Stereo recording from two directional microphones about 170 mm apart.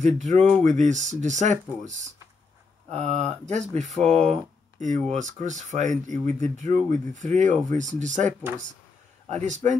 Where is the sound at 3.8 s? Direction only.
45° right (ahead or behind).